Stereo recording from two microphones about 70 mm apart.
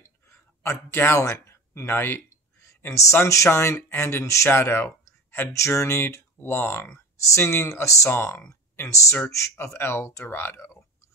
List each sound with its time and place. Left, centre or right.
0.0 s a sound: left
2.9 s speech: left
8.1 s speech: left